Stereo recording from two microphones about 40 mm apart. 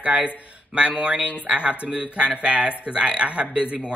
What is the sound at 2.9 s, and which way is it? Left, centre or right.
Speech, right.